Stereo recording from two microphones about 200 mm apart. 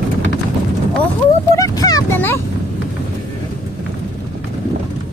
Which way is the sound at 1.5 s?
15° left (ahead or behind).